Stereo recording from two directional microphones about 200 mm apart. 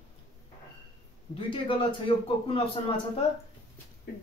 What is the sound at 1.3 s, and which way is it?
Speech, 25° left (ahead or behind).